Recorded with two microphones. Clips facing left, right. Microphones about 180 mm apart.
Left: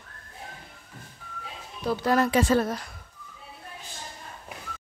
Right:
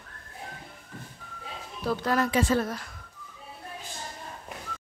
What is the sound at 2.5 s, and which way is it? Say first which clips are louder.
Speech: left 4 dB; 45° left (ahead or behind).